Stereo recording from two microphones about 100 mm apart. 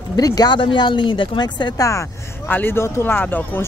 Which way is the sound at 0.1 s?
40° left (ahead or behind).